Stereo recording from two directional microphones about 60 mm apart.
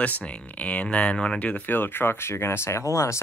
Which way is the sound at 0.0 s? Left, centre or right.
Left.